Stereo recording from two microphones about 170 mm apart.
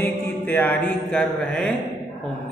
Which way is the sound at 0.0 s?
10° left (ahead or behind).